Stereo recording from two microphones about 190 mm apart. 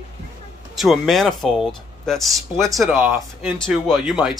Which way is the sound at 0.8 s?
Centre (ahead or behind).